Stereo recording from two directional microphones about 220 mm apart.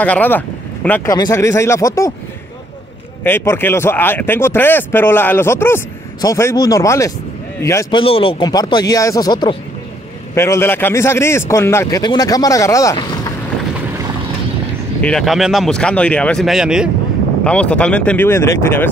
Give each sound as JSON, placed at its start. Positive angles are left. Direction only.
{"t": 0.0, "sound": "speech", "side_deg": 5}
{"t": 3.3, "sound": "speech", "side_deg": 10}
{"t": 8.0, "sound": "speech", "side_deg": 25}
{"t": 15.0, "sound": "speech", "side_deg": 5}